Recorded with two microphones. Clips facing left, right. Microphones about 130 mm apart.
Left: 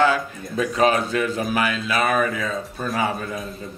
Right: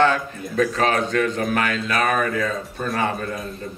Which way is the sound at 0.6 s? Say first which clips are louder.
Left 2 dB; 15° left (ahead or behind).